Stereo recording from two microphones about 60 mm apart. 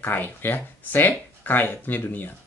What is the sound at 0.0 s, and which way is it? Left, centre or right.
Speech, left.